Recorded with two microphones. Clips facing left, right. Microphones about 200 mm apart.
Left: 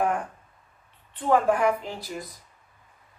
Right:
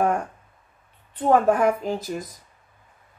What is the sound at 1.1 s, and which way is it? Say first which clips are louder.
A woman's voice: right 3 dB; 45° right (ahead or behind).